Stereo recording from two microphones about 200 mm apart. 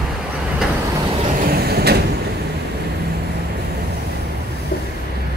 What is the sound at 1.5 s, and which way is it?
Vehicle, 50° right (ahead or behind).